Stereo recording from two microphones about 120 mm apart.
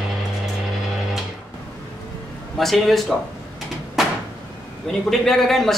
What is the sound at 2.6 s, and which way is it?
Speech, centre (ahead or behind).